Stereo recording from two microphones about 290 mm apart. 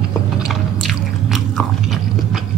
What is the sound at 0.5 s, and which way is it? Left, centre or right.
Biting, centre.